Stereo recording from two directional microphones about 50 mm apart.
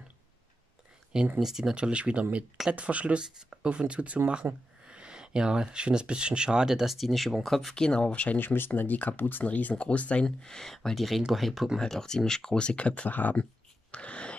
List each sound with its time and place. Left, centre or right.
1.4 s speech: centre
1.8 s speech: right
4.5 s speech: right
4.8 s speech: centre
7.7 s speech: centre
8.4 s speech: left
10.2 s speech: centre
11.8 s speech: centre
13.1 s speech: left
13.9 s a sound: left